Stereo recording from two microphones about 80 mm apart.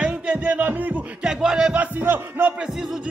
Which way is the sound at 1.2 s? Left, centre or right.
Centre.